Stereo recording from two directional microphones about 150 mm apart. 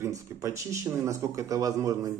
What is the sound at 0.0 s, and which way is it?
A man's voice, 20° right (ahead or behind).